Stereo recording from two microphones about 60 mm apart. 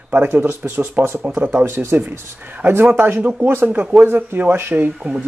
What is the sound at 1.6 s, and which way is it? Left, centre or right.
Speech, right.